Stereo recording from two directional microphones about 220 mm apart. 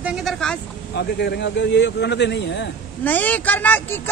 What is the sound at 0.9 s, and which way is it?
A man's voice, 50° left (ahead or behind).